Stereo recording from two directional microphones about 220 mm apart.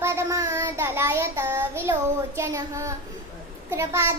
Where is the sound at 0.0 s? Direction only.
10° right (ahead or behind).